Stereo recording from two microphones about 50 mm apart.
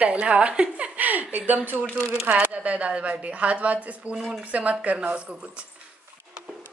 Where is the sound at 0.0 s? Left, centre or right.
Right.